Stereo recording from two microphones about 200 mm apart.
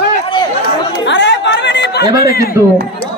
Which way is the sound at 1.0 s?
65° left (ahead or behind).